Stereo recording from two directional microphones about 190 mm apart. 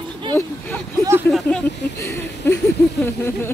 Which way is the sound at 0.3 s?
10° left (ahead or behind).